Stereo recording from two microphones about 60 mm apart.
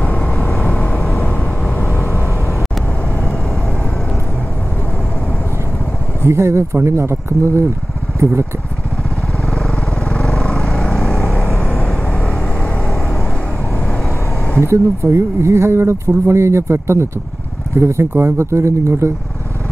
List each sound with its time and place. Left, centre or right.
0.0 s vehicle: left
1.2 s vehicle: centre
1.8 s vehicle: left
6.2 s speech: right
9.5 s vehicle: centre
14.6 s speech: right